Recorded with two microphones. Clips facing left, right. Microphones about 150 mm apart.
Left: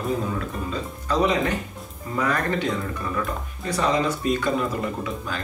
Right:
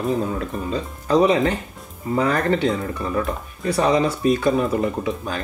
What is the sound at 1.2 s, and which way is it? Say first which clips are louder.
Speech: right 4 dB; 30° right (ahead or behind).